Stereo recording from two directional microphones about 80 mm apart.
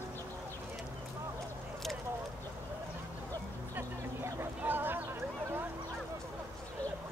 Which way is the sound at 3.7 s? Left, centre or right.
Right.